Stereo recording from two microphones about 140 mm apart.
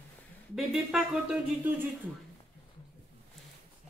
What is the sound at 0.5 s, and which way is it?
Speech, centre (ahead or behind).